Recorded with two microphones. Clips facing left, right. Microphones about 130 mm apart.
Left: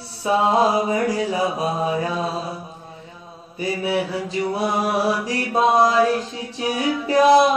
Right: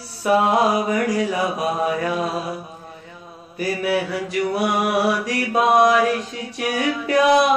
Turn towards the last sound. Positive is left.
turn(degrees=30)  # may be behind; listen again after turning